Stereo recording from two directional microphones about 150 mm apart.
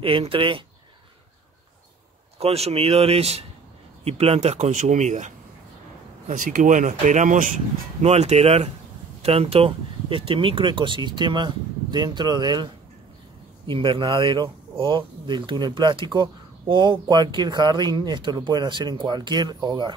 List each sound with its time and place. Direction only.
0.0 s speech: 35° right (ahead or behind)
2.3 s speech: 45° right (ahead or behind); by 7.5 s 60° right (ahead or behind)
8.0 s speech: 45° right (ahead or behind); by 12.6 s 30° right (ahead or behind)
13.7 s speech: 35° right (ahead or behind)